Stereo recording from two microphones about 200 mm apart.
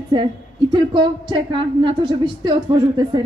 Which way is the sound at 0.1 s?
25° right (ahead or behind).